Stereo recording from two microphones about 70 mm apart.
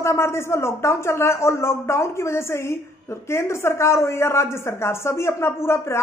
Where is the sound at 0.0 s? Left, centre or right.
Left.